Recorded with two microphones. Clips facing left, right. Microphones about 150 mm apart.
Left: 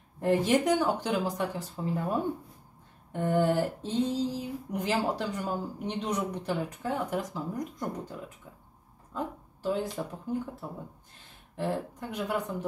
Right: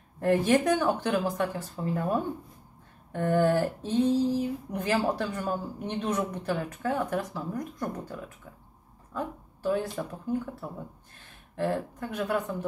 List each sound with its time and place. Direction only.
0.2 s speech: 15° left (ahead or behind)
3.1 s a woman's voice: 15° left (ahead or behind)